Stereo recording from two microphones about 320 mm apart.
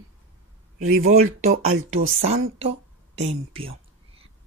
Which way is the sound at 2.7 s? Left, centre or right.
Right.